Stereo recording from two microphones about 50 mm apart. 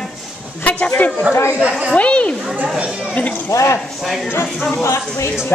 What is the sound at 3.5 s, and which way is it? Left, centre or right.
Speech, left.